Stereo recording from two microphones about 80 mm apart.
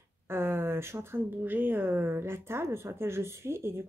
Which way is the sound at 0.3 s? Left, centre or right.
Right.